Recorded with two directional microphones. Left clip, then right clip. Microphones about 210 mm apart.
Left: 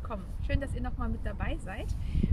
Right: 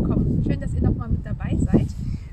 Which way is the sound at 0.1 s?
5° right (ahead or behind).